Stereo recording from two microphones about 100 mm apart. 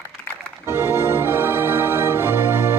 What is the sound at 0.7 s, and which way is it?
Music, 25° right (ahead or behind).